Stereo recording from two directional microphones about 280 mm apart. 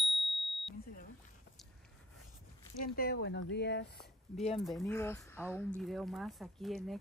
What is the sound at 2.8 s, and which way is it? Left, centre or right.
Speech, left.